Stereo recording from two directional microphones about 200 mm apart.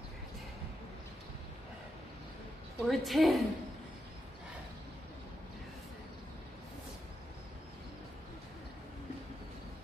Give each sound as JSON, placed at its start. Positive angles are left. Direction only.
{"t": 2.8, "sound": "a woman's voice", "side_deg": 0}